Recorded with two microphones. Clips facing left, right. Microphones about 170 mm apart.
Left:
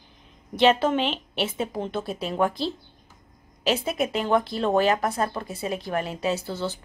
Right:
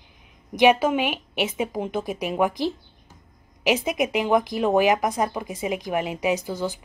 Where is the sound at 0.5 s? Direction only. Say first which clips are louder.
Right 2 dB; 10° right (ahead or behind).